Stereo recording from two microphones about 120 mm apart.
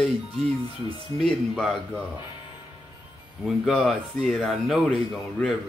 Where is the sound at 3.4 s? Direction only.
5° left (ahead or behind).